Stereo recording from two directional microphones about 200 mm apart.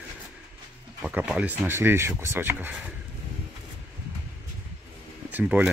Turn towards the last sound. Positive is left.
turn(degrees=-5)  # may be behind; listen again after turning